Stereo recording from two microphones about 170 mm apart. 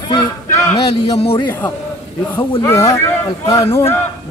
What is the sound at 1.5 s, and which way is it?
Speech, 10° left (ahead or behind).